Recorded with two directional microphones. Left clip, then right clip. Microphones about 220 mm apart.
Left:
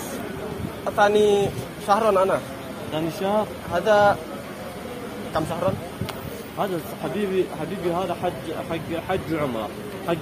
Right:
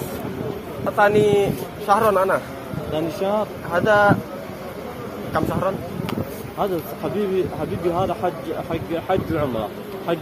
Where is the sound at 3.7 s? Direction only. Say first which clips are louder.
Right 2 dB; 10° right (ahead or behind).